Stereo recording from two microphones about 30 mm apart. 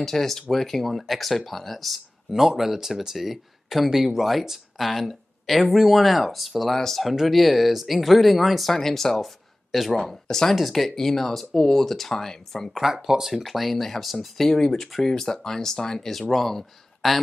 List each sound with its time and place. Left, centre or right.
0.0 s speech: centre
2.3 s speech: centre
6.7 s speech: centre
7.0 s speech: centre
8.7 s speech: centre
10.2 s speech: centre
12.9 s speech: centre
13.3 s speech: centre
14.9 s speech: centre
15.1 s speech: centre
16.1 s speech: centre